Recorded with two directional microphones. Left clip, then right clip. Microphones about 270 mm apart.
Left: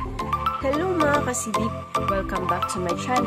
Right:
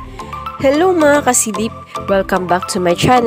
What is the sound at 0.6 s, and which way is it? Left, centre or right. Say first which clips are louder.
Speech: right 15 dB; right.